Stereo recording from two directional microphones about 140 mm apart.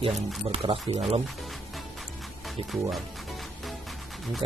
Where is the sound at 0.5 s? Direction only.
45° right (ahead or behind).